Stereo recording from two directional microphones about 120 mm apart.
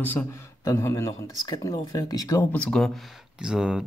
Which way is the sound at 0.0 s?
15° left (ahead or behind).